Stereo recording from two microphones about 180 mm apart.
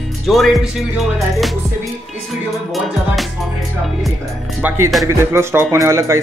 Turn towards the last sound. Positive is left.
turn(degrees=-15)  # may be behind; listen again after turning